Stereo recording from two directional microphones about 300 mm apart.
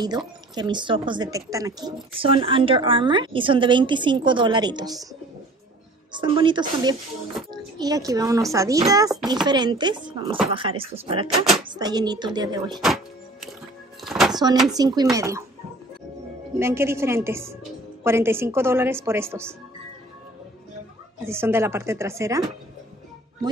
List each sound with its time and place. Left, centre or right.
0.6 s a woman's voice: centre
6.1 s a woman's voice: centre
12.8 s music: centre
14.0 s a sound: centre
14.3 s a sound: centre
14.7 s a woman's voice: centre
16.5 s a woman's voice: centre
21.2 s a woman's voice: centre